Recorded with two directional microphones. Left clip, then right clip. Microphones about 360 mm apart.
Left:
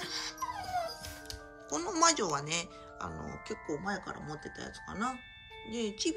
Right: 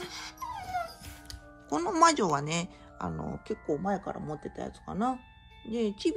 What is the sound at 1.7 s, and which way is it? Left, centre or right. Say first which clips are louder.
Speech: right 5 dB; centre.